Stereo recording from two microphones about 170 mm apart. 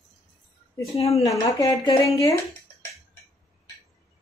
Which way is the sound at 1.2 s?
20° left (ahead or behind).